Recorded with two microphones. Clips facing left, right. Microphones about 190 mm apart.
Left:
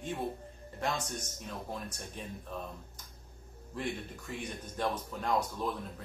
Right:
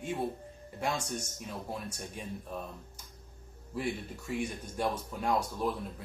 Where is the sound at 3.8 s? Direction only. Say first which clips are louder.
Right 2 dB; 10° right (ahead or behind).